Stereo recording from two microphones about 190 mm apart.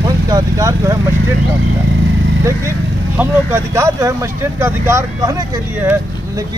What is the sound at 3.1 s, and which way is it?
Speech, 15° right (ahead or behind).